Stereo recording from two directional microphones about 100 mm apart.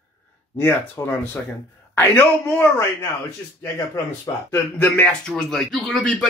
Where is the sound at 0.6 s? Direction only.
25° left (ahead or behind).